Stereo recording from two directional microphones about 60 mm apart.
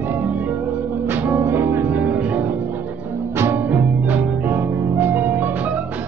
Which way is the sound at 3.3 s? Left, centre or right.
Right.